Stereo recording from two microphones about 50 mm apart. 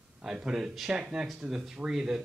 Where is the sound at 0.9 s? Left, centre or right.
Right.